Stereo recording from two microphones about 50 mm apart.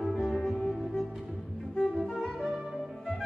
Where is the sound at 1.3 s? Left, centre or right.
Centre.